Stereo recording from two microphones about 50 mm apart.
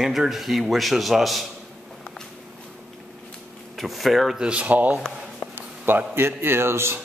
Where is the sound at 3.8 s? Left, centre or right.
Centre.